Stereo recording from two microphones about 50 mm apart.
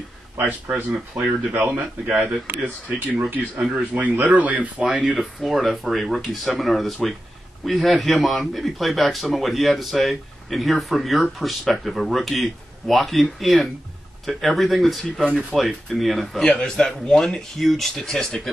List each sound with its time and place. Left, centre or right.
0.7 s speech: right
4.7 s speech: centre
16.5 s speech: centre